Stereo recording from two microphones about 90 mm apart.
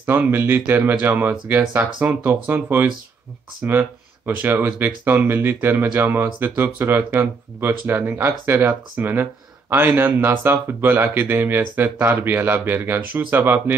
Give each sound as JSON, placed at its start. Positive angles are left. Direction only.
{"t": 0.0, "sound": "speech", "side_deg": -20}